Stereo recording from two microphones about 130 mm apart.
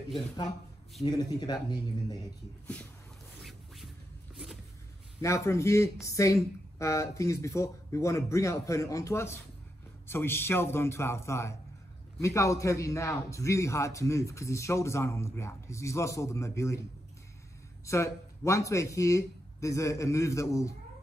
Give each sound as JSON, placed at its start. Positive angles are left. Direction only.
{"t": 1.0, "sound": "speech", "side_deg": 30}
{"t": 2.6, "sound": "speech", "side_deg": 10}
{"t": 3.4, "sound": "a sound", "side_deg": 0}
{"t": 5.2, "sound": "a man's voice", "side_deg": 20}
{"t": 17.8, "sound": "a man's voice", "side_deg": 20}